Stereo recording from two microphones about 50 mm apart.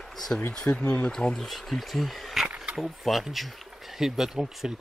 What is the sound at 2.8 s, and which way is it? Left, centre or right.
Speech, centre.